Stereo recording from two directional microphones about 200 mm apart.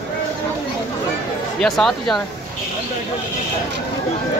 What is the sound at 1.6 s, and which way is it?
Speech, centre (ahead or behind).